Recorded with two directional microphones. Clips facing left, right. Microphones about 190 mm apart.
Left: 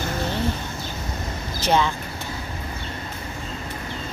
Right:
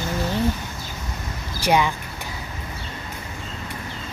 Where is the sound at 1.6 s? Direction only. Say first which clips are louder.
Right 1 dB; 10° right (ahead or behind).